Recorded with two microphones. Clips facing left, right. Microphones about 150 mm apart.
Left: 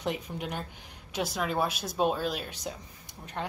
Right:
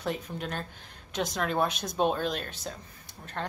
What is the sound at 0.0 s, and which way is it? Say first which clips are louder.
A woman's voice: even; 15° left (ahead or behind).